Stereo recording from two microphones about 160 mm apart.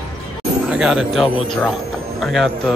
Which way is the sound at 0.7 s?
5° right (ahead or behind).